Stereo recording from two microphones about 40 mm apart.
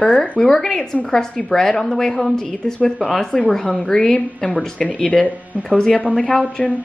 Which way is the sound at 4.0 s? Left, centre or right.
Left.